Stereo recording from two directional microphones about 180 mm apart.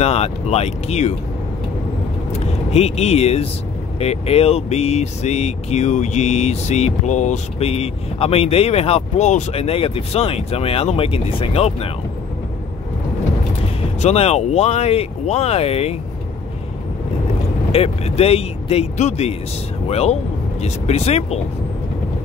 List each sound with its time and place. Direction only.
0.0 s speech: 35° left (ahead or behind)
2.7 s speech: 35° left (ahead or behind)
14.0 s speech: 35° left (ahead or behind)
17.6 s speech: 35° left (ahead or behind)